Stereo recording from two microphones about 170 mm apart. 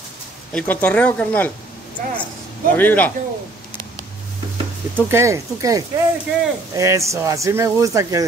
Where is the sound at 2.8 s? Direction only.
10° left (ahead or behind).